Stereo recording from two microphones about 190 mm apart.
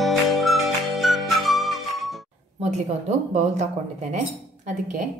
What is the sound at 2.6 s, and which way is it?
Speech, 35° right (ahead or behind).